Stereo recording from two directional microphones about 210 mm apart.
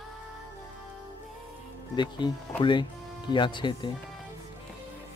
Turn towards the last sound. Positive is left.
turn(degrees=20)  # may be behind; listen again after turning